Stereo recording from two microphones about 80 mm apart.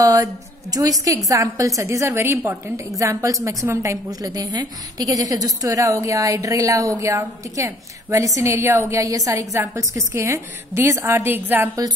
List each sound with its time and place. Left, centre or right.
0.0 s a woman's voice: right